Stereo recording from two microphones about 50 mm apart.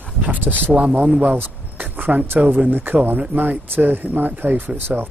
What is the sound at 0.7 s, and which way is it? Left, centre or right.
A man's voice, right.